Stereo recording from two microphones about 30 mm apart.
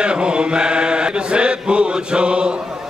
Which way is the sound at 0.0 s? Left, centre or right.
Right.